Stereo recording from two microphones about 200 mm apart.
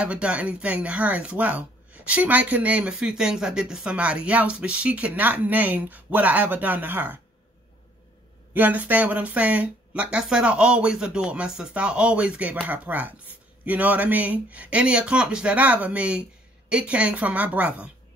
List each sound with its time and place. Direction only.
0.0 s speech: 5° right (ahead or behind)
8.5 s speech: 10° right (ahead or behind)